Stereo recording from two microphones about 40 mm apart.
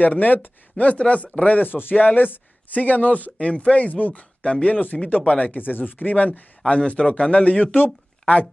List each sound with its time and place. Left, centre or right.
0.0 s speech: left
1.7 s speech: left
5.6 s speech: left
6.7 s speech: left